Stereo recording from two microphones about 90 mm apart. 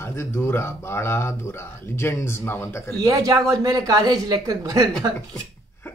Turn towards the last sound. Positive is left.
turn(degrees=-45)  # may be behind; listen again after turning